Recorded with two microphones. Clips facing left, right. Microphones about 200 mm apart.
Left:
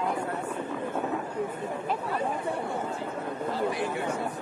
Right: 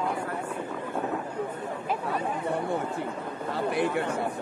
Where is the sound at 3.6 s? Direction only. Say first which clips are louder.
Right 5 dB; 60° right (ahead or behind).